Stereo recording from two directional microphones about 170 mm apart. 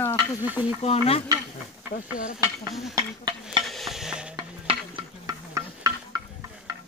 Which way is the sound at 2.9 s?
25° right (ahead or behind).